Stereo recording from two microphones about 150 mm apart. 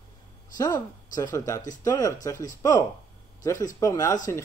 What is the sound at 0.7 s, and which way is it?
Speech, 20° left (ahead or behind).